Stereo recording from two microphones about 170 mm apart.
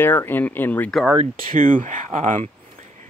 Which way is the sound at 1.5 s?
50° right (ahead or behind).